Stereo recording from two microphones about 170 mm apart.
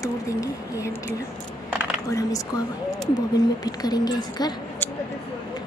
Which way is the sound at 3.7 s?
25° left (ahead or behind).